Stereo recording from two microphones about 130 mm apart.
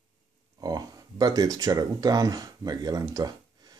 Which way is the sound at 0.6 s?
30° right (ahead or behind).